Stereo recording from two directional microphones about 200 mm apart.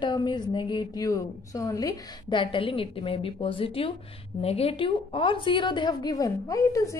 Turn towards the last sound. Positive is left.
turn(degrees=15)  # may be behind; listen again after turning